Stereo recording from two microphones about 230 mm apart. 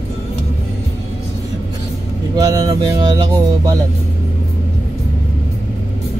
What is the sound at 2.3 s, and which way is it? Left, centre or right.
Speech, centre.